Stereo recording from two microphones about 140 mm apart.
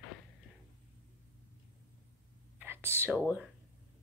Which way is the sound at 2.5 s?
15° right (ahead or behind).